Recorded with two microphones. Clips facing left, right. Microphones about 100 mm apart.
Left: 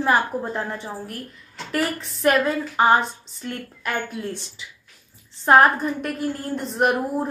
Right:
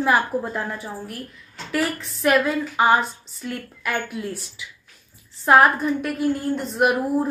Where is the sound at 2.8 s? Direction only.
Centre (ahead or behind).